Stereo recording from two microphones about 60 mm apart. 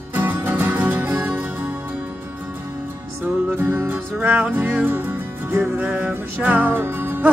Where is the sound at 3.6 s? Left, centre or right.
Right.